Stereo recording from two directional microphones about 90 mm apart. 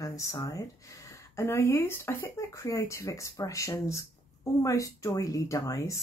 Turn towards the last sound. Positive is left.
turn(degrees=35)  # may be behind; listen again after turning